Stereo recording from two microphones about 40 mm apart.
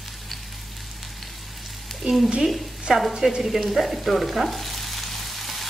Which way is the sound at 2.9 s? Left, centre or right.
Centre.